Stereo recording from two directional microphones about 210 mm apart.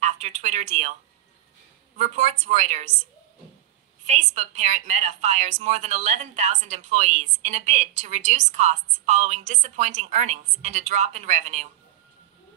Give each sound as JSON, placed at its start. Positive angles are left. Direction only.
{"t": 0.0, "sound": "a woman's voice", "side_deg": -35}
{"t": 2.0, "sound": "a woman's voice", "side_deg": -30}
{"t": 4.0, "sound": "a woman's voice", "side_deg": -35}